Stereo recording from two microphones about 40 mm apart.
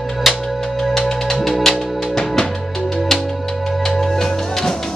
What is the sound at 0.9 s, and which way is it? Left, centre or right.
Music, centre.